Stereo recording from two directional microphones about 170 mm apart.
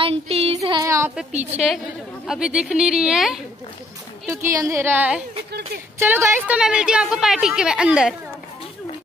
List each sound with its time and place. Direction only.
0.0 s child singing: 35° right (ahead or behind)
0.6 s speech: 25° right (ahead or behind)
2.2 s a woman's voice: 5° right (ahead or behind)
4.3 s a woman's voice: 15° right (ahead or behind)